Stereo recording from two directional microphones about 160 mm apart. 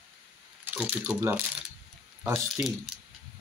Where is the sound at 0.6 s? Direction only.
10° right (ahead or behind).